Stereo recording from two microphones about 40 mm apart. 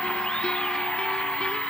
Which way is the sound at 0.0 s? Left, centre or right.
Left.